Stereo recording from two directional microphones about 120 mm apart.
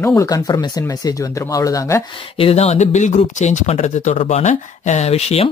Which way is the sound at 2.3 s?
55° left (ahead or behind).